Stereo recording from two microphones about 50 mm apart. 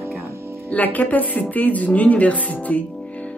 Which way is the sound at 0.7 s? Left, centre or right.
Left.